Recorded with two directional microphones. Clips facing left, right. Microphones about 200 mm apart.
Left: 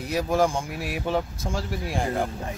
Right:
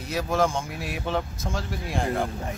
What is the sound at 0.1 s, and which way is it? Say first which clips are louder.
Speech: left 1 dB; 15° left (ahead or behind).